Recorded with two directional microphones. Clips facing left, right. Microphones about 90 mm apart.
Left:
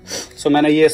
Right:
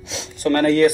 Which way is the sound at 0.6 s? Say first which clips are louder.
Left 2 dB; 60° left (ahead or behind).